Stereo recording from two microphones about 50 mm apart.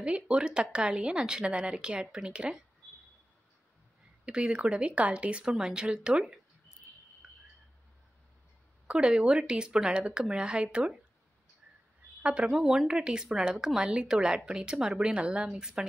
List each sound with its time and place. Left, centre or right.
0.0 s speech: right
4.3 s a woman's voice: right
8.8 s speech: centre
12.2 s a woman's voice: right
12.4 s a woman's voice: centre